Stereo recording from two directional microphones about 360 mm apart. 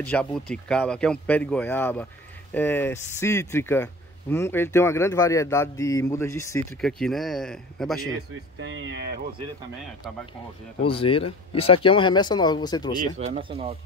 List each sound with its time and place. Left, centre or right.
0.0 s speech: centre
8.1 s speech: right
10.9 s speech: centre
13.2 s speech: centre